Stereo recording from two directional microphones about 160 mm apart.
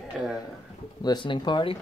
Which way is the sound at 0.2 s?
5° right (ahead or behind).